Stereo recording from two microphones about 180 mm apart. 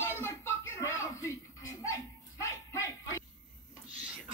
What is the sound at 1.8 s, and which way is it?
Bow-wow, 15° left (ahead or behind).